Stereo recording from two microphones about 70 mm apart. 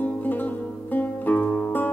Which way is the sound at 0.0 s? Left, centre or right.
Left.